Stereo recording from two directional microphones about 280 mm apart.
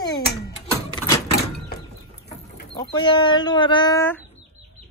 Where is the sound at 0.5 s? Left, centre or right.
Centre.